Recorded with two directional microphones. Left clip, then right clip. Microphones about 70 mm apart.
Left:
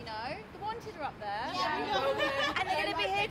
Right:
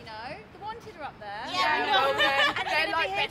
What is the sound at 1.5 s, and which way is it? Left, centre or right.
Speech, right.